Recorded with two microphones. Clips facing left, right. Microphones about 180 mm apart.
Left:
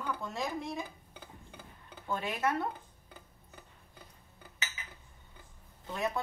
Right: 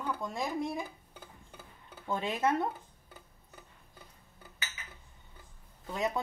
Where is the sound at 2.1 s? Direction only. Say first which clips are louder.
Right 2 dB; 20° right (ahead or behind).